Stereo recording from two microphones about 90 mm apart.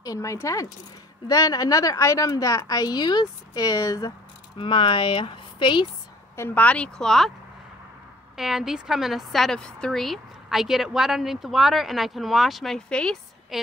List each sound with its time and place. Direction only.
0.0 s a woman's voice: 35° left (ahead or behind)
4.6 s speech: 70° left (ahead or behind)
6.3 s speech: 30° left (ahead or behind)
6.6 s speech: 15° left (ahead or behind)
8.4 s a woman's voice: 5° right (ahead or behind)
13.5 s a woman's voice: 5° right (ahead or behind)